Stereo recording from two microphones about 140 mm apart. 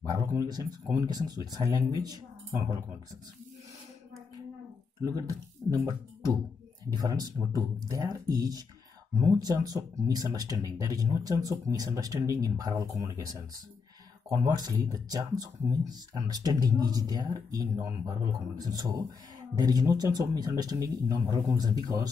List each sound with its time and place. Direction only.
0.0 s speech: 25° right (ahead or behind)
5.0 s speech: 20° right (ahead or behind)